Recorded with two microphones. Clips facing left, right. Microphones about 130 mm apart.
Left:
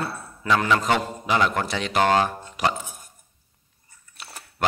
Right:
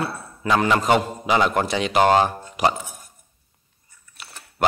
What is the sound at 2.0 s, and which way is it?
Speech, 25° right (ahead or behind).